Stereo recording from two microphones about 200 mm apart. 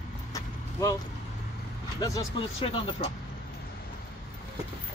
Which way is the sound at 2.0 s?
20° left (ahead or behind).